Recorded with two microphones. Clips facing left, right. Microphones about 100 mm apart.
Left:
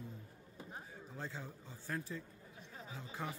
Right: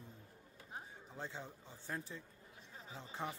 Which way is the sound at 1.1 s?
20° right (ahead or behind).